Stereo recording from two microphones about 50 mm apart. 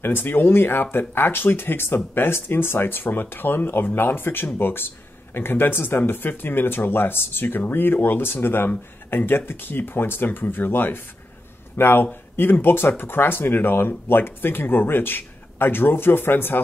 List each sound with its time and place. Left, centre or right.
0.0 s a man's voice: left
12.1 s speech: left